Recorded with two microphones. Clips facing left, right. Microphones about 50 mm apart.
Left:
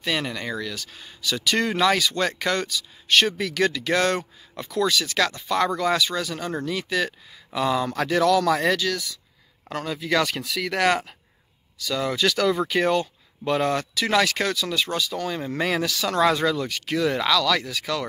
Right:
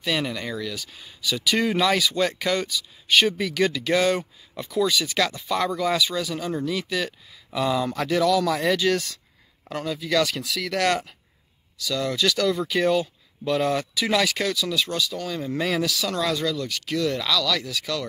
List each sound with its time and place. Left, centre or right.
0.0 s speech: centre
8.9 s speech: right
9.8 s speech: centre
16.2 s speech: left
16.6 s speech: centre
17.6 s speech: centre